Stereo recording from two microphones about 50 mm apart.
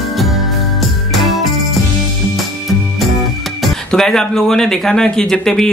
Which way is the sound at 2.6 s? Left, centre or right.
Centre.